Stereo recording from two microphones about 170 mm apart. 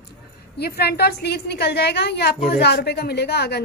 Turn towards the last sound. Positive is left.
turn(degrees=75)  # may be behind; listen again after turning